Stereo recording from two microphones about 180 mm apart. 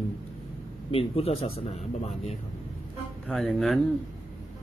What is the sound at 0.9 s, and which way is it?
Speech, 35° left (ahead or behind).